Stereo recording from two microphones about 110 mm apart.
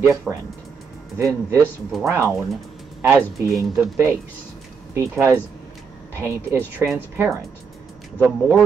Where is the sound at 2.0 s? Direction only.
25° right (ahead or behind).